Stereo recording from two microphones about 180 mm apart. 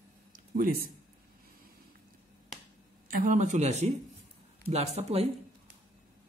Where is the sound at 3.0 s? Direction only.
50° right (ahead or behind).